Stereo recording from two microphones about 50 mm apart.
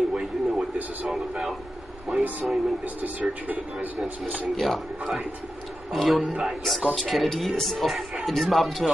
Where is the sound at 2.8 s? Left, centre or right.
Right.